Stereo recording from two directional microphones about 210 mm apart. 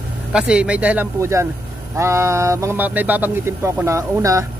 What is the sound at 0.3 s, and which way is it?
Speech, 5° right (ahead or behind).